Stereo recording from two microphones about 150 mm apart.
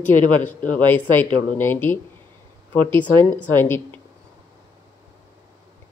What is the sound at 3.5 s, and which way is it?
Speech, 15° left (ahead or behind).